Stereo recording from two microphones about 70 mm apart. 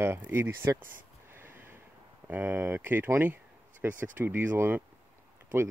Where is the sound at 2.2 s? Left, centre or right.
Right.